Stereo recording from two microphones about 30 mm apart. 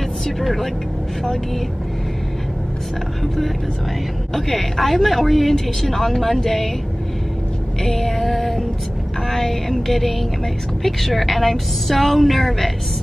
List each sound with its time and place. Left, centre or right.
0.4 s a woman's voice: centre
4.3 s a woman's voice: centre
7.8 s music: centre
9.3 s a woman's voice: centre